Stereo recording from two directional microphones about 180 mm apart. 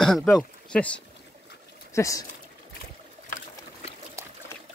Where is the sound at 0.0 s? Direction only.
Centre (ahead or behind).